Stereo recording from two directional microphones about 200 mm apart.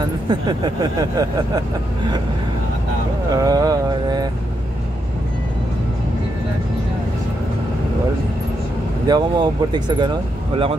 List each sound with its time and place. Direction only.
0.0 s speech: 20° right (ahead or behind)
3.3 s a sound: 20° right (ahead or behind)
9.0 s speech: 20° right (ahead or behind)